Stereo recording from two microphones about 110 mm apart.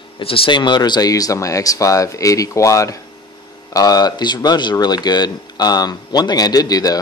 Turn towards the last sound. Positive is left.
turn(degrees=35)  # may be behind; listen again after turning